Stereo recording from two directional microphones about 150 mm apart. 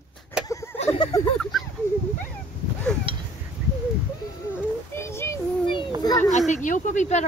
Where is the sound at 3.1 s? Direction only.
35° right (ahead or behind).